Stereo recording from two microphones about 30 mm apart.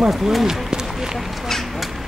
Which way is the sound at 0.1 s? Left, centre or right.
Centre.